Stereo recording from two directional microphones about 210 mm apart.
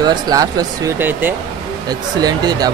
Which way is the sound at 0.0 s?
20° right (ahead or behind).